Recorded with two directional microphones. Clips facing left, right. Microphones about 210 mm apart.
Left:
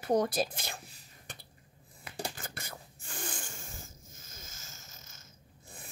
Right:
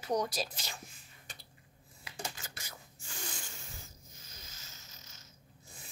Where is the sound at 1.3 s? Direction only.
55° left (ahead or behind).